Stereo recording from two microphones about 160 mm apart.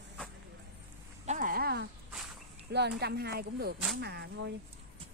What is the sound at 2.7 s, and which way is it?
Speech, 90° right.